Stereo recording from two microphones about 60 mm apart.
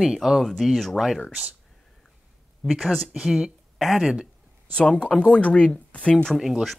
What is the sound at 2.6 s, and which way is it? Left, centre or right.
Speech, centre.